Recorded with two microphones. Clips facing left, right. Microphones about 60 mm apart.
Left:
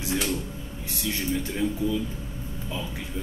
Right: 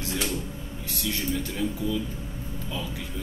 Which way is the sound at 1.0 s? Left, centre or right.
Centre.